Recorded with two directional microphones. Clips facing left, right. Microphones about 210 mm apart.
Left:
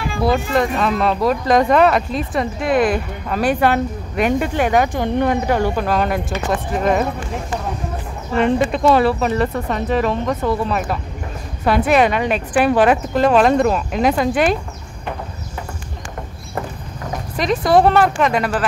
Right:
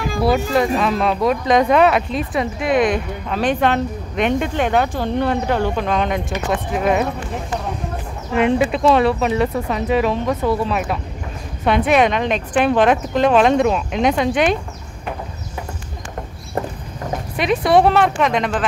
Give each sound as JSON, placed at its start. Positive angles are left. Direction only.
{"t": 0.7, "sound": "speech", "side_deg": 0}
{"t": 8.3, "sound": "speech", "side_deg": -5}
{"t": 17.4, "sound": "speech", "side_deg": 0}